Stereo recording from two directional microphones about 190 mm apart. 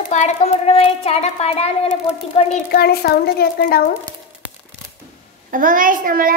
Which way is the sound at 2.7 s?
55° left (ahead or behind).